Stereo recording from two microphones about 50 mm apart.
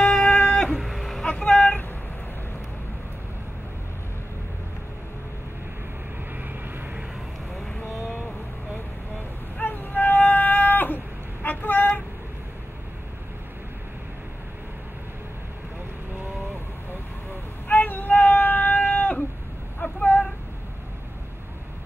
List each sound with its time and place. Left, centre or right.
0.1 s cat: left
0.7 s vehicle: centre
1.2 s vehicle: centre
6.3 s vehicle: right
9.6 s music: left
11.4 s vehicle: left
17.6 s a sound: left